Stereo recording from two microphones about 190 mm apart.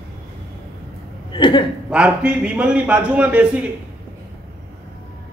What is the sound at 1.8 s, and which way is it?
A man's voice, 5° right (ahead or behind).